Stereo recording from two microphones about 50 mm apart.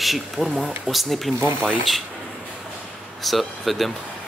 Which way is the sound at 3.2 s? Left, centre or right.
Centre.